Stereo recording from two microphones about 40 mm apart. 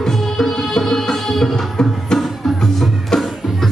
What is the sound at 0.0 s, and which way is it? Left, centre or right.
Music, centre.